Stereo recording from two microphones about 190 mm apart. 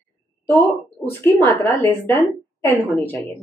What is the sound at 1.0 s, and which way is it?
Speech, centre (ahead or behind).